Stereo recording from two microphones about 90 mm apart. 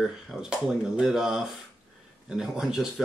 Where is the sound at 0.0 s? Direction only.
5° right (ahead or behind).